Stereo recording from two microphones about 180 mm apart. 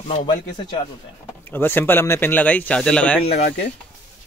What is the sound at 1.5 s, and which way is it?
Speech, 10° left (ahead or behind).